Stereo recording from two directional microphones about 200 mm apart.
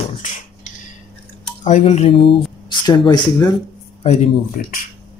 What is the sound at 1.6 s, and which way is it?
Speech, 35° left (ahead or behind).